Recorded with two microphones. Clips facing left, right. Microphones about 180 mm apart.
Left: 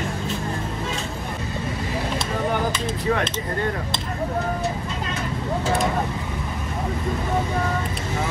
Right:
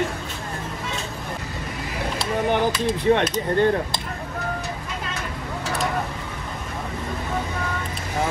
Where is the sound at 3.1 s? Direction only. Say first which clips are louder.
Right 5 dB; 35° right (ahead or behind).